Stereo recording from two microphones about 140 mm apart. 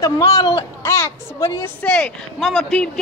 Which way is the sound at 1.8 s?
5° left (ahead or behind).